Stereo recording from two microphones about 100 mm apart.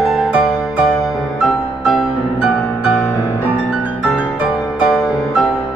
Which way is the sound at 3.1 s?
30° left (ahead or behind).